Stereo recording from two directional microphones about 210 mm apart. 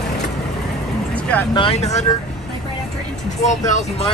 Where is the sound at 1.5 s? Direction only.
25° left (ahead or behind).